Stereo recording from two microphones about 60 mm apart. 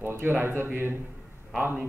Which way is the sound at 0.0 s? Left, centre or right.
Right.